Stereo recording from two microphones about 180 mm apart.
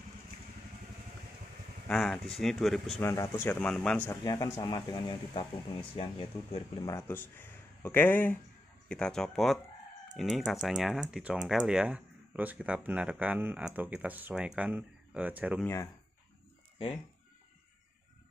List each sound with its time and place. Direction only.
1.9 s speech: 5° left (ahead or behind)
3.0 s speech: 15° left (ahead or behind)
4.1 s speech: 20° left (ahead or behind)
6.8 s speech: 15° left (ahead or behind); by 15.6 s 10° right (ahead or behind)
15.6 s speech: 15° left (ahead or behind)
16.7 s speech: 30° left (ahead or behind)